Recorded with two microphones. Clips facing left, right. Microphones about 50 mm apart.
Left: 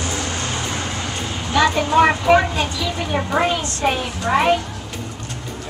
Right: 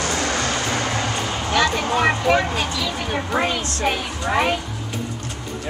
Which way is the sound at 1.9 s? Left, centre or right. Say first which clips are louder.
Left 5 dB; centre.